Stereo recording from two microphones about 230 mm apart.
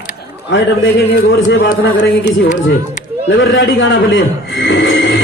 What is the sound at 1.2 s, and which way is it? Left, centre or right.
Speech, left.